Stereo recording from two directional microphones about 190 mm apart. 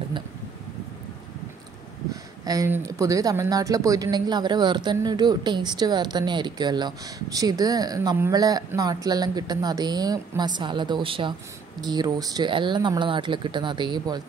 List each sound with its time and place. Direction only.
2.4 s speech: 15° right (ahead or behind)